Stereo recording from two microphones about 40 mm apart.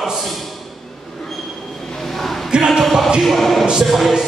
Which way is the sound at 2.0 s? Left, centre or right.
Centre.